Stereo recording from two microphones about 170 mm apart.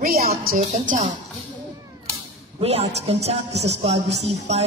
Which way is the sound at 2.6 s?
35° right (ahead or behind).